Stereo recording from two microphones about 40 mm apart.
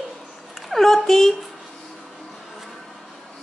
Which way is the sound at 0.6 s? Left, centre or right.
Centre.